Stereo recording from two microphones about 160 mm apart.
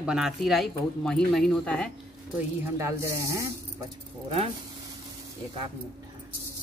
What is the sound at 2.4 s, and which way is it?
Speech, 20° right (ahead or behind).